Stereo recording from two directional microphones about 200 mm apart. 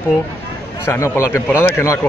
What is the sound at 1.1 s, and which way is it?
Speech, 10° left (ahead or behind).